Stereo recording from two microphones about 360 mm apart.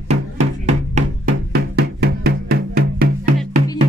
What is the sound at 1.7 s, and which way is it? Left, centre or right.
Music, right.